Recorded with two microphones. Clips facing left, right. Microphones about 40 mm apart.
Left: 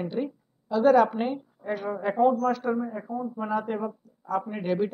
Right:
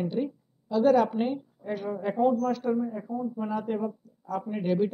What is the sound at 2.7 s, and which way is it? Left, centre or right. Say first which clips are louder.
Speech: even; centre.